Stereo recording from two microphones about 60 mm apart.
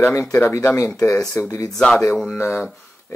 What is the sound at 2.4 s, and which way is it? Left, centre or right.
Speech, left.